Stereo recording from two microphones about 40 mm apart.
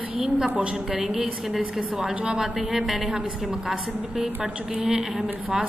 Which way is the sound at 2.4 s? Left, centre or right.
Centre.